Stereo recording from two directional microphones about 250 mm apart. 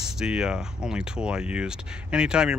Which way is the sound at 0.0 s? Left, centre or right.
Centre.